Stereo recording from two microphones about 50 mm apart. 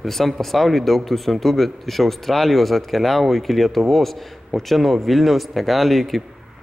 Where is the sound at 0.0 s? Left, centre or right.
Centre.